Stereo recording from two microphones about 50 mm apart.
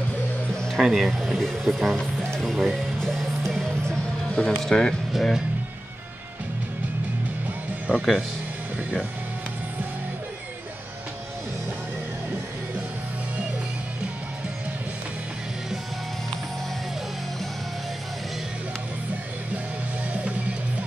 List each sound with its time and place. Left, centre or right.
0.7 s speech: centre
2.0 s music: centre
5.1 s speech: centre
7.9 s speech: right